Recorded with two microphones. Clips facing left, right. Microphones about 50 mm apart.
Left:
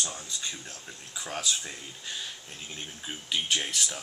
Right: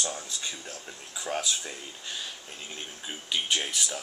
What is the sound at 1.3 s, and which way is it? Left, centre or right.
Speech, centre.